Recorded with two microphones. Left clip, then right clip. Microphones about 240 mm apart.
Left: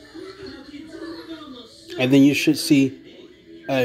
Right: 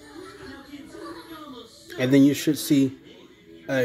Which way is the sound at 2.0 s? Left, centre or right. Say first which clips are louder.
Left 3 dB; centre.